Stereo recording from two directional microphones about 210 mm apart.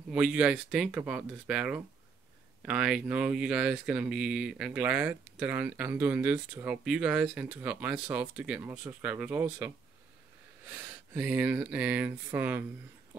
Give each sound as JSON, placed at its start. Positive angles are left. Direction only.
{"t": 0.1, "sound": "speech", "side_deg": -5}
{"t": 10.7, "sound": "speech", "side_deg": -10}